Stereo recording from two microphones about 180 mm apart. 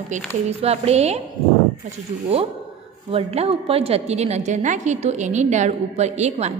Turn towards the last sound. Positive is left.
turn(degrees=-40)  # may be behind; listen again after turning